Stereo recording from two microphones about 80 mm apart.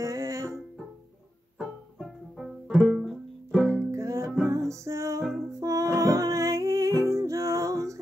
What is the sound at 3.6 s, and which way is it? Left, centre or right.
Music, right.